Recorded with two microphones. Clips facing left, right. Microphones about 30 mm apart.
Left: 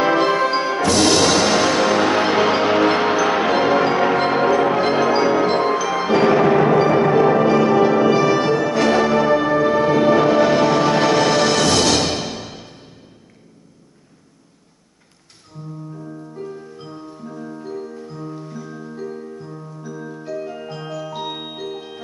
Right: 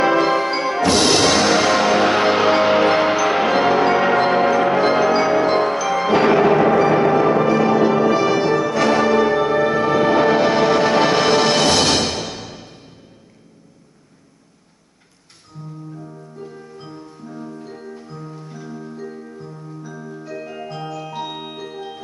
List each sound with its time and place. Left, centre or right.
0.0 s music: centre
0.8 s music: centre
6.3 s music: centre; by 11.9 s right
12.1 s music: centre
18.1 s music: centre
18.7 s music: centre
20.3 s music: centre
20.7 s music: centre